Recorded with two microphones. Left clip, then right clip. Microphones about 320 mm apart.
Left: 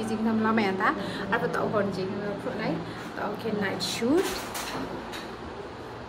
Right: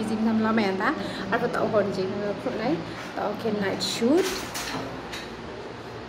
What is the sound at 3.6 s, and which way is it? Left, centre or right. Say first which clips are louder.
Speech: right 2 dB; centre.